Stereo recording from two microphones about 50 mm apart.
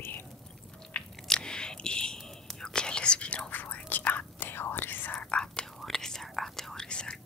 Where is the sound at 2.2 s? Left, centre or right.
Centre; by 3.5 s left.